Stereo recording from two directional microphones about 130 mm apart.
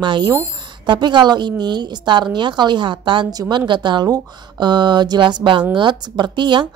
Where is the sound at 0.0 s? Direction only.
35° right (ahead or behind).